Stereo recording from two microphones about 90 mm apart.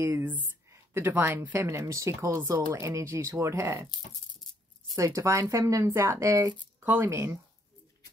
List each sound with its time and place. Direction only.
0.7 s speech: 25° right (ahead or behind)
4.9 s speech: 35° right (ahead or behind)